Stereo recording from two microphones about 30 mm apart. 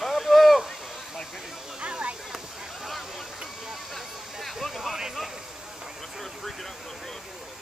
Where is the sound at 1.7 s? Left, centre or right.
Right.